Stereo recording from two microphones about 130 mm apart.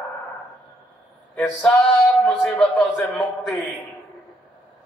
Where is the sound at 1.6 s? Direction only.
5° left (ahead or behind).